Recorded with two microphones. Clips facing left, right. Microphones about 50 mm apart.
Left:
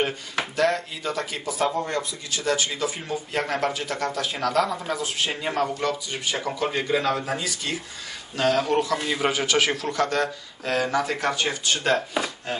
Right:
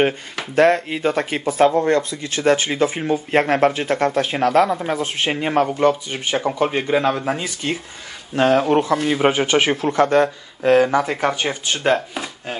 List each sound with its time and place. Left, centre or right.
0.6 s speech: right